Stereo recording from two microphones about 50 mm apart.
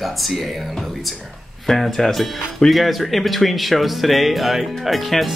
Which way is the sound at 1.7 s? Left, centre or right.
Centre.